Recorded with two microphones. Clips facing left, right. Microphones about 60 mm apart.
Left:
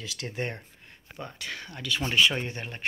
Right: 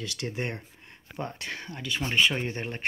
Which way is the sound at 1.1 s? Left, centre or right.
Right.